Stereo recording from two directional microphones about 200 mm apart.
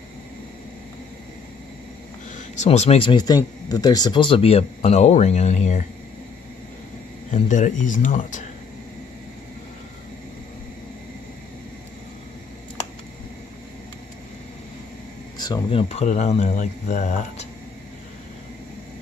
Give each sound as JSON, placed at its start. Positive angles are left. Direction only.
{"t": 2.3, "sound": "speech", "side_deg": 35}
{"t": 7.2, "sound": "speech", "side_deg": 40}
{"t": 15.3, "sound": "speech", "side_deg": 20}